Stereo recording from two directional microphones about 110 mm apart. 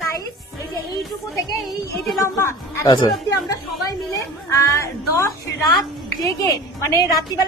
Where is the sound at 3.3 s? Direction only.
35° left (ahead or behind).